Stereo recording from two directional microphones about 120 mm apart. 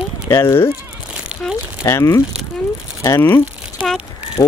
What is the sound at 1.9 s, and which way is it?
Speech, 25° left (ahead or behind).